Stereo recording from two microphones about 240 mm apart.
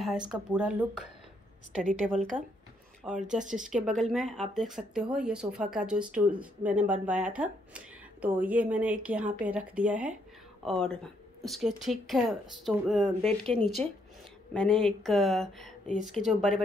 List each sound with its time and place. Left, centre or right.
0.3 s speech: centre
3.3 s speech: right
3.7 s speech: centre